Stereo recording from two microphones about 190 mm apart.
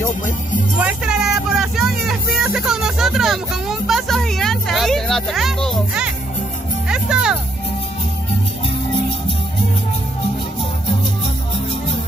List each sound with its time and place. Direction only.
0.7 s vehicle: 5° right (ahead or behind)
6.9 s music: 5° right (ahead or behind)